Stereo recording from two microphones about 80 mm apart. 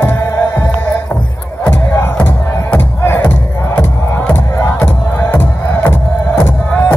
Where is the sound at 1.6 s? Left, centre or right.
Left.